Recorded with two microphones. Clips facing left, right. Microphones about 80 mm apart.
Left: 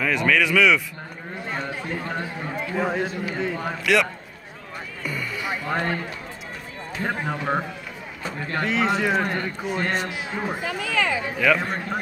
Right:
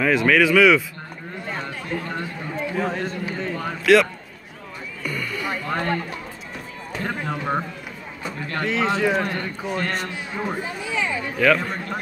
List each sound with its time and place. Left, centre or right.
0.0 s speech: centre
1.5 s a man's voice: centre
5.0 s music: centre
7.0 s a man's voice: centre
8.6 s speech: centre
10.6 s speech: left
11.3 s speech: centre